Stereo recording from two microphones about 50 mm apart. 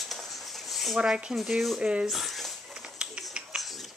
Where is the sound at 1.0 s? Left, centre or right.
Centre.